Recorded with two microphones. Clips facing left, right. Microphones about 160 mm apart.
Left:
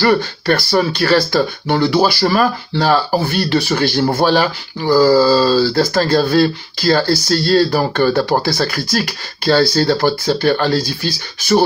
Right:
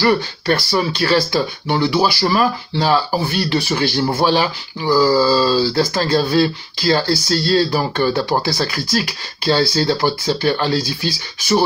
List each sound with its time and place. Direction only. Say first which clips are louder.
0.0 s speech: left 2 dB; 50° left (ahead or behind)